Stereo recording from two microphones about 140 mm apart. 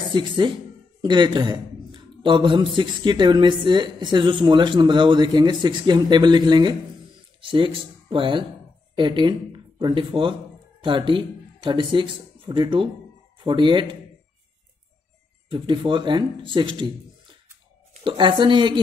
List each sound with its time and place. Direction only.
0.1 s a man's voice: 35° right (ahead or behind)
15.5 s a man's voice: 35° right (ahead or behind)
18.0 s a man's voice: 35° right (ahead or behind)